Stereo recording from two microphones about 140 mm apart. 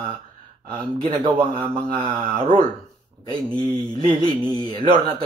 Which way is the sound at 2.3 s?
60° right (ahead or behind).